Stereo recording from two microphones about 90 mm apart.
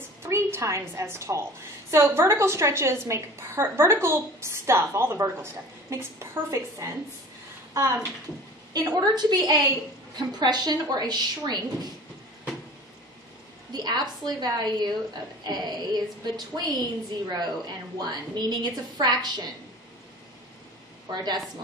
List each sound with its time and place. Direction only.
0.2 s a woman's voice: 30° right (ahead or behind)
8.7 s a woman's voice: 50° right (ahead or behind)
13.7 s a woman's voice: 50° right (ahead or behind)
21.1 s a woman's voice: 50° right (ahead or behind)